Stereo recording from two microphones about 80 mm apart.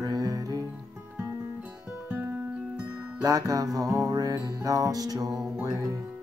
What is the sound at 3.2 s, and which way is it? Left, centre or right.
Music, right.